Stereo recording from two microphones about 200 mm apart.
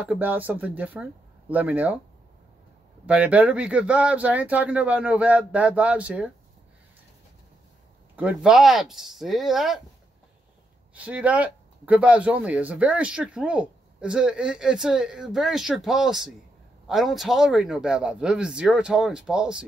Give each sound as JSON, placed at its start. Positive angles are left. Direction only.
{"t": 0.0, "sound": "speech", "side_deg": -10}
{"t": 3.1, "sound": "speech", "side_deg": -5}
{"t": 8.2, "sound": "speech", "side_deg": -5}
{"t": 11.0, "sound": "speech", "side_deg": -5}